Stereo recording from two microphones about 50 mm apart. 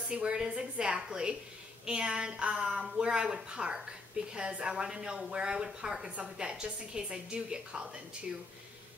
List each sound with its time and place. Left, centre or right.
0.1 s a woman's voice: centre